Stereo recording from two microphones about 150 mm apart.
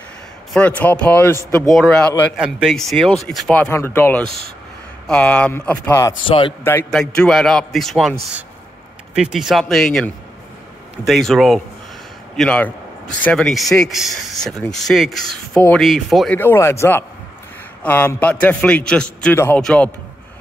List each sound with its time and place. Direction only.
0.5 s a man's voice: 10° left (ahead or behind)
2.3 s a man's voice: 5° right (ahead or behind); by 6.1 s 15° left (ahead or behind)
6.2 s a man's voice: 35° left (ahead or behind)
6.9 s a man's voice: 5° left (ahead or behind)
11.1 s a man's voice: centre (ahead or behind)
16.3 s a man's voice: 15° left (ahead or behind)